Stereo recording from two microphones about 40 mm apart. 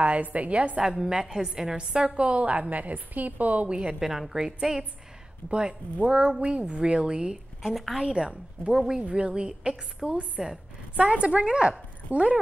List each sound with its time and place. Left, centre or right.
0.0 s a woman's voice: right
0.7 s a woman's voice: centre; by 3.8 s right
3.8 s a woman's voice: centre; by 7.3 s right
7.7 s a woman's voice: centre
8.0 s a woman's voice: right
10.0 s a woman's voice: centre
10.4 s a woman's voice: centre
11.0 s a woman's voice: right